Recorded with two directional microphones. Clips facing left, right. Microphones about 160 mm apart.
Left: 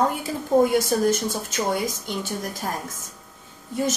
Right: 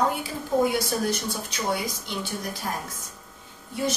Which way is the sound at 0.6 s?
45° left (ahead or behind).